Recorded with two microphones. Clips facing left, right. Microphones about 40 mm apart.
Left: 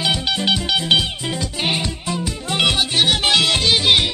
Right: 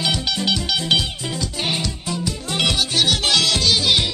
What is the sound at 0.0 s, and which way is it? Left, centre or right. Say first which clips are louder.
Music: left 2 dB; centre.